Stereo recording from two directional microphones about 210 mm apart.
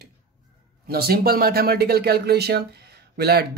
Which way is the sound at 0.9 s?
45° right (ahead or behind).